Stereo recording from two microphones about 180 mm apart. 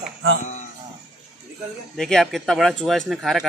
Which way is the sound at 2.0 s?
Centre (ahead or behind).